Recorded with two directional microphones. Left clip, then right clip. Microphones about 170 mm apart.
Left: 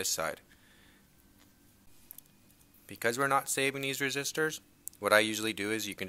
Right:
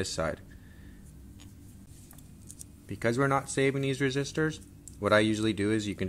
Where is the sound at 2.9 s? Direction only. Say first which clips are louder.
Right 1 dB; 25° left (ahead or behind).